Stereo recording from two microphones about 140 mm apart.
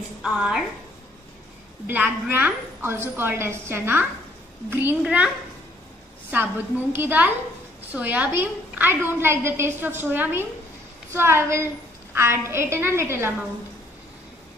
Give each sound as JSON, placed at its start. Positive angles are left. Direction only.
{"t": 0.2, "sound": "a woman's voice", "side_deg": -5}
{"t": 1.9, "sound": "a woman's voice", "side_deg": -15}
{"t": 6.3, "sound": "a woman's voice", "side_deg": -15}